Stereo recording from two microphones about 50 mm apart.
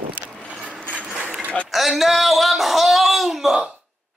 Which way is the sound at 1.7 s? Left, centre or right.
Centre.